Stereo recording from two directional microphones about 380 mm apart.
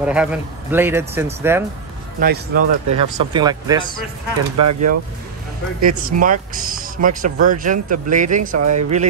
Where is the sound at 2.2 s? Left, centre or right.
Right.